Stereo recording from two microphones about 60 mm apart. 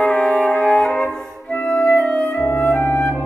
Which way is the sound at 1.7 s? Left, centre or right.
Left.